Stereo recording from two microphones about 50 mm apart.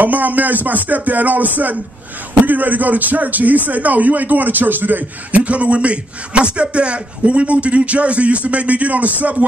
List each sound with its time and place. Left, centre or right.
0.0 s speech: right